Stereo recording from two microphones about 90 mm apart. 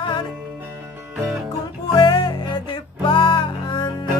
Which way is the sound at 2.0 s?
50° left (ahead or behind).